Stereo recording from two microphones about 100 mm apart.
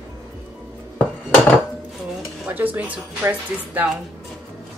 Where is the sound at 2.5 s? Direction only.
15° right (ahead or behind).